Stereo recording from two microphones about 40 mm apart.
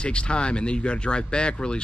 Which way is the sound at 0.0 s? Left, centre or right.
Left.